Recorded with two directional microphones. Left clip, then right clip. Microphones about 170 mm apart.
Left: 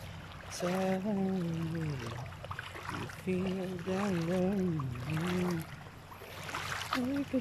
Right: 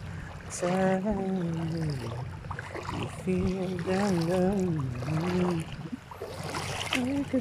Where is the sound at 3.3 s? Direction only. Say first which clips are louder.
Right 4 dB; centre (ahead or behind).